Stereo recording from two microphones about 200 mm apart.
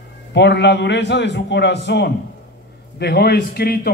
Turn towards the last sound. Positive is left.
turn(degrees=50)  # may be behind; listen again after turning